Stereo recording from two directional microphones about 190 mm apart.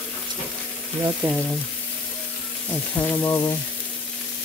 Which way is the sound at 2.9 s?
10° left (ahead or behind).